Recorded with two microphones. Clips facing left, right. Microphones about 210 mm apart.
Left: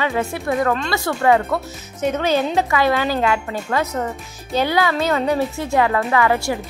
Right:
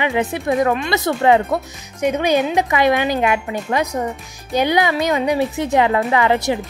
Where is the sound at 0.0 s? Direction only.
15° right (ahead or behind).